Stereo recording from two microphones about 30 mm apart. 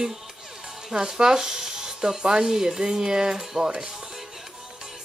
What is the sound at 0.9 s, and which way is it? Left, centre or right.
Speech, right.